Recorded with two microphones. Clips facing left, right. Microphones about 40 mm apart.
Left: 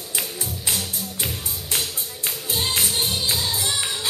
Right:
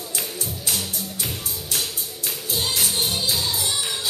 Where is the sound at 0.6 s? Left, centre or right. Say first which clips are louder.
Left 1 dB; left.